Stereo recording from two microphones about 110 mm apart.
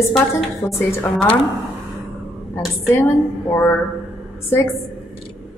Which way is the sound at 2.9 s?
20° left (ahead or behind).